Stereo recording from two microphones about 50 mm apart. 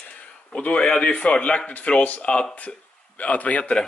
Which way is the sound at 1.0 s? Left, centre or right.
Left.